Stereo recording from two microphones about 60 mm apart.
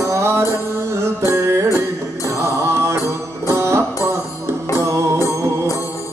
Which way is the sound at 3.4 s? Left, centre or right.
Right.